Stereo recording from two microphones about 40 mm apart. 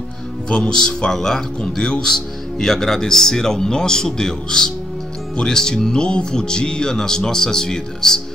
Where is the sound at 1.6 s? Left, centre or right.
Left.